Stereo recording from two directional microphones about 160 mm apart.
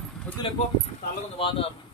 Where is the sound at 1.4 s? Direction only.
35° left (ahead or behind).